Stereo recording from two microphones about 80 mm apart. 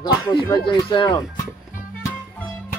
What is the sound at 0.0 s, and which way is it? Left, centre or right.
Speech, left.